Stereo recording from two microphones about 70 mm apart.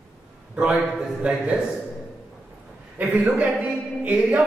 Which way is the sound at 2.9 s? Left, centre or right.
Right.